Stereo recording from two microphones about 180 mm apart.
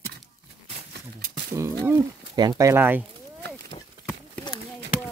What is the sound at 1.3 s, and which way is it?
Speech, 15° right (ahead or behind).